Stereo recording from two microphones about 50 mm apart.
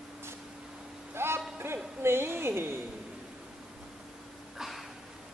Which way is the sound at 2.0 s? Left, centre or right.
Right.